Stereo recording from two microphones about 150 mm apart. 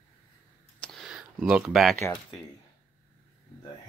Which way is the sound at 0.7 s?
5° left (ahead or behind).